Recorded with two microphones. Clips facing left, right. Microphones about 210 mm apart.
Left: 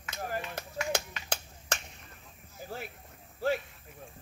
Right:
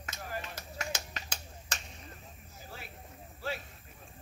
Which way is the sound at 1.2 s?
60° left (ahead or behind).